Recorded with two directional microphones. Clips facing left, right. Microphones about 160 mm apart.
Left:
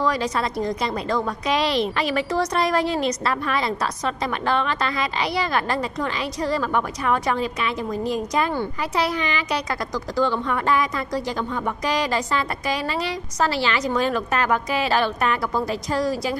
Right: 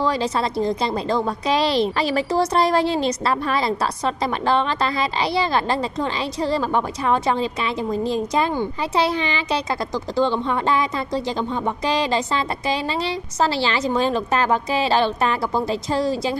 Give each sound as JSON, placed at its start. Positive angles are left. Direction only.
{"t": 0.0, "sound": "a woman's voice", "side_deg": -30}